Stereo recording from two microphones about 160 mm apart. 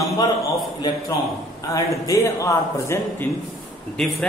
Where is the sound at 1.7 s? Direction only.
20° left (ahead or behind).